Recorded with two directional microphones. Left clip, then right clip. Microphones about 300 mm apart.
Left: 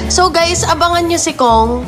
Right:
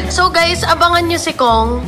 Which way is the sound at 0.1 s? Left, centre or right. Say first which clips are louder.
Left 1 dB; centre.